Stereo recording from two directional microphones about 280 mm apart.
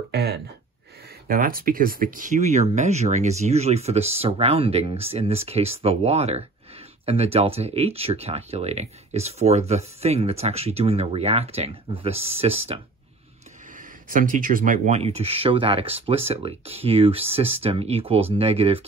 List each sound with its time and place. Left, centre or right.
0.1 s speech: right
14.0 s speech: right